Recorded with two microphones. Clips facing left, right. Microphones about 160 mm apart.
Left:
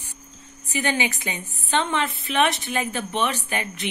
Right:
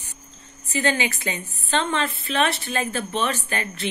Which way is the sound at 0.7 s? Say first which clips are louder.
Right 1 dB; 15° left (ahead or behind).